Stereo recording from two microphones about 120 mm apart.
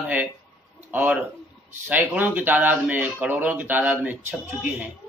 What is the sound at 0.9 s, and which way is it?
Speech, 10° right (ahead or behind).